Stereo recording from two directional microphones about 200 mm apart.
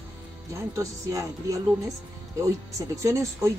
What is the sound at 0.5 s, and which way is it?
A woman's voice, 15° right (ahead or behind).